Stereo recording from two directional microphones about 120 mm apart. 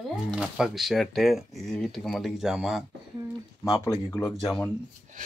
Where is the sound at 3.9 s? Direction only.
25° left (ahead or behind).